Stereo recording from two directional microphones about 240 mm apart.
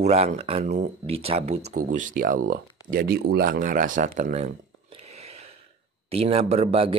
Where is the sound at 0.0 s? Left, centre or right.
Right.